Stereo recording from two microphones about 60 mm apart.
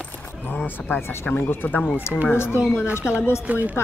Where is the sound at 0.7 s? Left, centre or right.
Left.